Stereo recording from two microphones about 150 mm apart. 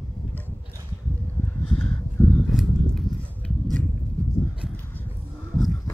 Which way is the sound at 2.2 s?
15° left (ahead or behind).